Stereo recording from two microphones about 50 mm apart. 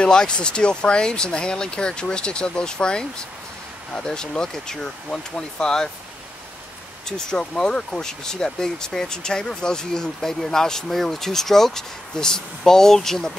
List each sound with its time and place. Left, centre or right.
0.0 s speech: centre
7.1 s speech: centre